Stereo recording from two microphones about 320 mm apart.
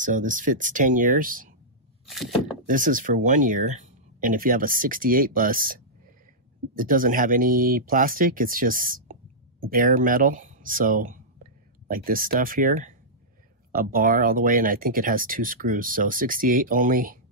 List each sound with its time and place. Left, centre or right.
0.0 s speech: right
2.0 s a sound: centre
2.6 s speech: right
6.8 s speech: right